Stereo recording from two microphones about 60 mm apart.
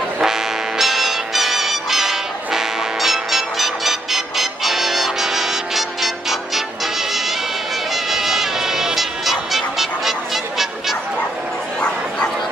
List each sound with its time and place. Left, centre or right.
0.2 s music: centre